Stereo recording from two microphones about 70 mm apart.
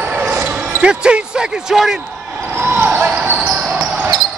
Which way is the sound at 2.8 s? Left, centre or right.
Right.